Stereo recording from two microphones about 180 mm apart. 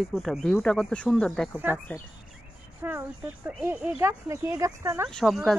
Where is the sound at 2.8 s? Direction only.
15° right (ahead or behind).